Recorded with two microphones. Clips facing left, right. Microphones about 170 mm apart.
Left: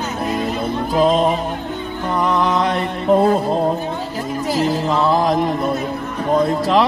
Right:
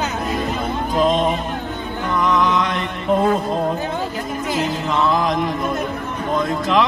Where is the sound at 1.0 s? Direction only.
35° left (ahead or behind).